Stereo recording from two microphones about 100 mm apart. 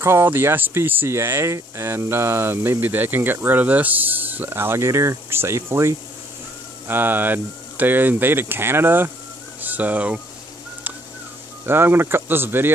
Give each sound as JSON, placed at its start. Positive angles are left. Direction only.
{"t": 0.0, "sound": "speech", "side_deg": -25}
{"t": 11.6, "sound": "speech", "side_deg": -20}